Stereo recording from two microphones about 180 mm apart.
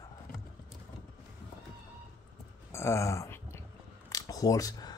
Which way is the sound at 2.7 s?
15° left (ahead or behind).